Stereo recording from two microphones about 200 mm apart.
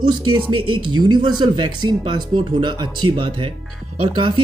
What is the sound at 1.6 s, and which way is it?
Speech, 90° right.